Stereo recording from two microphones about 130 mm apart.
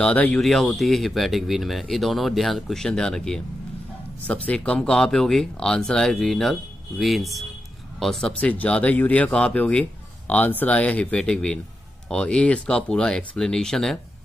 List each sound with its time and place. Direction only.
0.0 s speech: 10° left (ahead or behind)